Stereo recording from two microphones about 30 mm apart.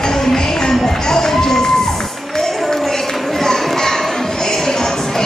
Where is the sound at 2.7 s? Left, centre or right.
Centre.